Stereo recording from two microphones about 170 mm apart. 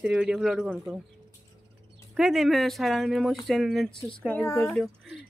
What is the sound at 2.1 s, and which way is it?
Speech, centre (ahead or behind).